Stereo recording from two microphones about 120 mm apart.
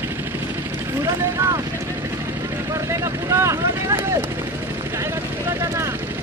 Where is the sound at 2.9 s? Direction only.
25° right (ahead or behind).